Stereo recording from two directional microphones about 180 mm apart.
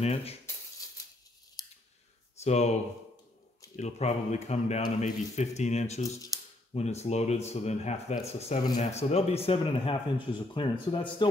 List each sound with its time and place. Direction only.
0.0 s speech: 35° left (ahead or behind)
1.6 s scissors: 20° left (ahead or behind)
2.4 s speech: 40° left (ahead or behind)
3.7 s speech: 40° left (ahead or behind)
6.3 s a sound: 20° left (ahead or behind)
6.7 s speech: 35° left (ahead or behind)